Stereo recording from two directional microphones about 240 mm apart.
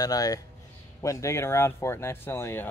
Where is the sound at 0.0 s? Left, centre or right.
Centre.